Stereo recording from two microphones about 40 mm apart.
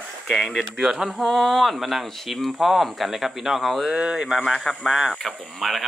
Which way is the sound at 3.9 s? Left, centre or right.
Centre.